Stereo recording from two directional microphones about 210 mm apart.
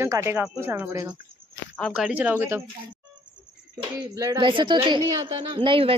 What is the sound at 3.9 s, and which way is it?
Speech, 20° right (ahead or behind).